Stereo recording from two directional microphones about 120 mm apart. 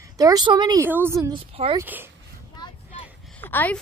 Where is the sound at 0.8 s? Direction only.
20° right (ahead or behind).